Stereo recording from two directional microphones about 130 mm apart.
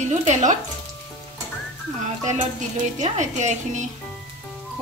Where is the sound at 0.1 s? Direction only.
60° right (ahead or behind).